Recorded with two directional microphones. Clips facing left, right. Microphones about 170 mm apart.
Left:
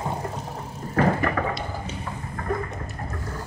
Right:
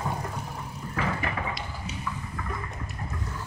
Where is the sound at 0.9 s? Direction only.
50° left (ahead or behind).